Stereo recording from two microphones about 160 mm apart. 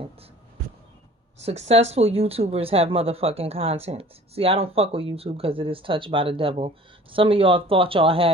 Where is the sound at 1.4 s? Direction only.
40° right (ahead or behind).